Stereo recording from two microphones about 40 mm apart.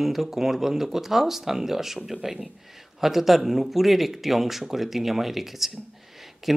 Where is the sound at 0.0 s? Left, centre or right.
Centre.